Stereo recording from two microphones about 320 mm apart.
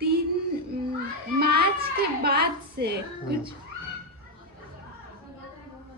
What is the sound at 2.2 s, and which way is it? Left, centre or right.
Music, right.